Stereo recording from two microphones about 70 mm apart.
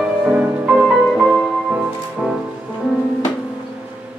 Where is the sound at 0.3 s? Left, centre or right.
Centre.